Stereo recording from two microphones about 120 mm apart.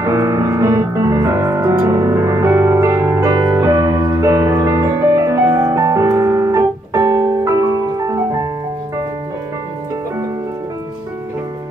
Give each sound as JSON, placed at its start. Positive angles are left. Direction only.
{"t": 0.0, "sound": "music", "side_deg": -25}